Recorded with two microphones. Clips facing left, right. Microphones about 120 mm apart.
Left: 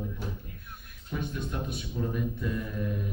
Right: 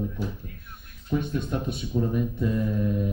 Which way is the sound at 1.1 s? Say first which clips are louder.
Right 7 dB; 25° right (ahead or behind).